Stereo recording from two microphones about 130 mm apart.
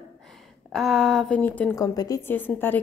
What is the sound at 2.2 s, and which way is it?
Speech, 15° left (ahead or behind).